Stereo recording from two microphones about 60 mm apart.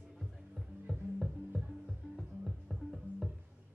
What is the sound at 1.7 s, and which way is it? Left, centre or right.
Music, centre.